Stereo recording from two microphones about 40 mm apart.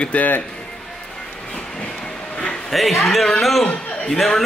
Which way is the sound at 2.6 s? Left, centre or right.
Centre.